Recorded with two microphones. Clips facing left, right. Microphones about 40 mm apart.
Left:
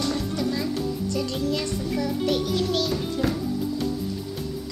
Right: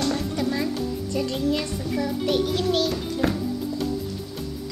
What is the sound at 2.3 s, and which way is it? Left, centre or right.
Music, right.